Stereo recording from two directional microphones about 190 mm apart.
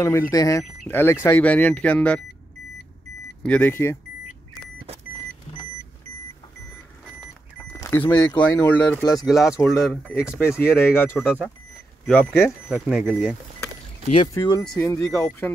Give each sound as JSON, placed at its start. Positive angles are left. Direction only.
{"t": 0.0, "sound": "speech", "side_deg": 15}
{"t": 3.4, "sound": "speech", "side_deg": 10}
{"t": 7.7, "sound": "a sound", "side_deg": 15}
{"t": 8.0, "sound": "speech", "side_deg": 20}
{"t": 8.5, "sound": "speech", "side_deg": 5}
{"t": 10.4, "sound": "speech", "side_deg": 15}
{"t": 14.0, "sound": "speech", "side_deg": 30}